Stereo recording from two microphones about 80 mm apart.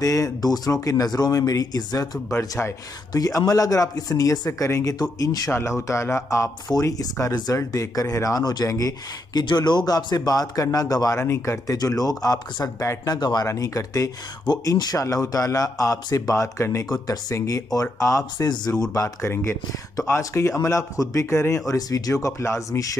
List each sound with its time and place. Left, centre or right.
0.0 s speech: left
2.3 s a man's voice: left
3.1 s speech: left
5.2 s speech: left
5.5 s a man's voice: left
9.4 s speech: left
11.1 s speech: left
13.5 s speech: left
16.9 s a man's voice: left
20.2 s a man's voice: left
21.7 s speech: left